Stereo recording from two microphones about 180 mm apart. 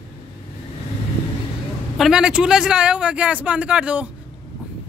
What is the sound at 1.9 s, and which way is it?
A man's voice, centre (ahead or behind).